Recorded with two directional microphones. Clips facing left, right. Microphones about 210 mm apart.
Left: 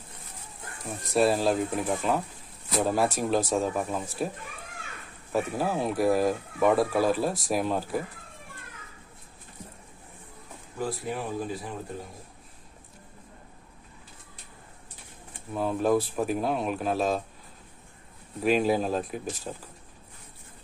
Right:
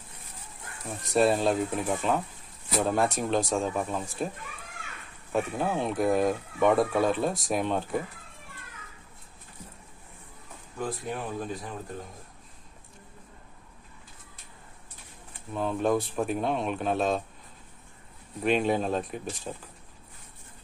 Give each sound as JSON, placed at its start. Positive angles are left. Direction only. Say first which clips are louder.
{"t": 1.0, "sound": "speech", "louder": "even", "side_deg": 0}
{"t": 5.3, "sound": "speech", "louder": "left 1 dB", "side_deg": 5}
{"t": 10.8, "sound": "speech", "louder": "left 1 dB", "side_deg": 5}
{"t": 15.5, "sound": "speech", "louder": "left 2 dB", "side_deg": 5}
{"t": 18.4, "sound": "speech", "louder": "left 1 dB", "side_deg": 5}